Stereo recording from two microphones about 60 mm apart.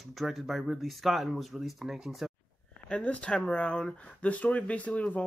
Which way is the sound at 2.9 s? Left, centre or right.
Left.